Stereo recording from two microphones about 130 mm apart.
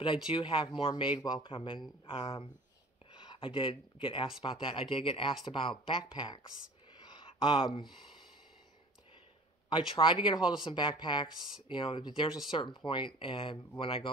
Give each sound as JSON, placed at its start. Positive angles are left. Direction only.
{"t": 0.3, "sound": "speech", "side_deg": 40}
{"t": 7.0, "sound": "a sound", "side_deg": 40}
{"t": 9.7, "sound": "speech", "side_deg": 40}
{"t": 11.2, "sound": "speech", "side_deg": -5}
{"t": 11.7, "sound": "speech", "side_deg": 40}